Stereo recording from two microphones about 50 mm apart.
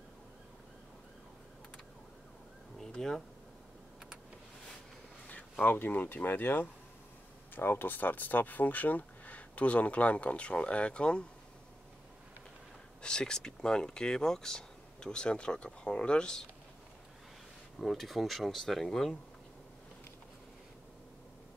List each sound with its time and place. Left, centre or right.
2.8 s a sound: centre
5.3 s speech: left
13.0 s speech: centre
17.7 s speech: centre